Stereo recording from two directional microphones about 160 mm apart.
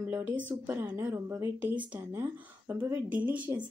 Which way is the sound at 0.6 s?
15° right (ahead or behind).